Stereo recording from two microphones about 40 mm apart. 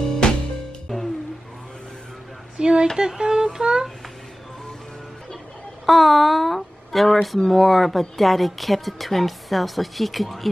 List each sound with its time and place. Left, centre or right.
0.2 s music: centre
0.8 s music: centre
2.5 s a sound: right
3.0 s music: centre
5.9 s speech: centre